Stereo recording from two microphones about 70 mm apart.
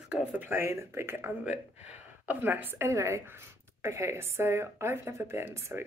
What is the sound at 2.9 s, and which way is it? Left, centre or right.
A woman's voice, right.